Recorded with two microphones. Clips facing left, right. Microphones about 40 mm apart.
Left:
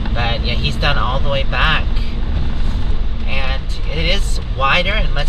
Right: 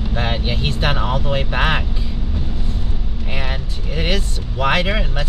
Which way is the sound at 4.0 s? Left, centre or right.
Left.